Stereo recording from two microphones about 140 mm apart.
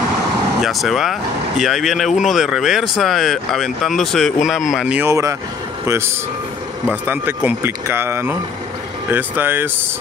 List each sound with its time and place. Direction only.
0.6 s speech: centre (ahead or behind)
5.0 s speech: 20° right (ahead or behind)